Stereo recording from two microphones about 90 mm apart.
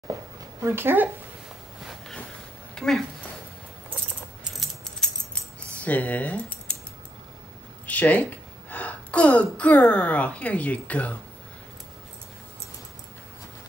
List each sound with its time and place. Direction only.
0.6 s speech: 25° right (ahead or behind)
2.7 s a sound: 5° left (ahead or behind)
4.5 s keys jangling: 5° left (ahead or behind)
5.6 s keys jangling: 15° left (ahead or behind)
7.8 s speech: 15° left (ahead or behind)